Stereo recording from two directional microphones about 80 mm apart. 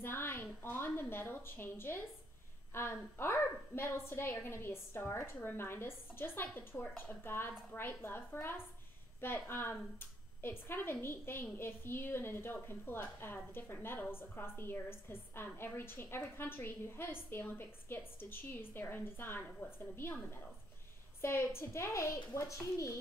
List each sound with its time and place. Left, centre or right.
0.0 s a woman's voice: left